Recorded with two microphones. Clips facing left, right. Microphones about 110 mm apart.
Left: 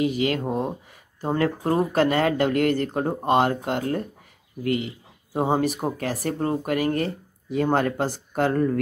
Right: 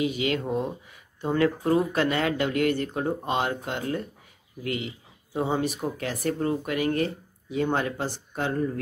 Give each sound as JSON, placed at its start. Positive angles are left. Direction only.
{"t": 0.0, "sound": "speech", "side_deg": 45}